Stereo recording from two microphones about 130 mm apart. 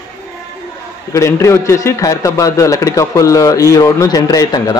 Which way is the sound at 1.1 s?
20° left (ahead or behind).